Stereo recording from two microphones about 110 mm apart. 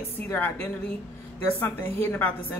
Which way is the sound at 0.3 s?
20° left (ahead or behind).